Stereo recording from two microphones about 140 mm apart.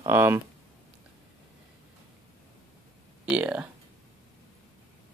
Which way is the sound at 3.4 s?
10° right (ahead or behind).